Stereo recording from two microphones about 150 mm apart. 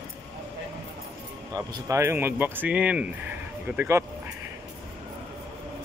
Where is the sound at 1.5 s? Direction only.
20° right (ahead or behind).